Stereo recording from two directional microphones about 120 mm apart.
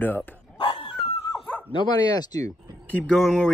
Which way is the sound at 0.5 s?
45° left (ahead or behind).